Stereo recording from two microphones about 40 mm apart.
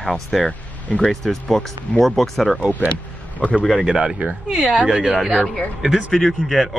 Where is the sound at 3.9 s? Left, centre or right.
Centre.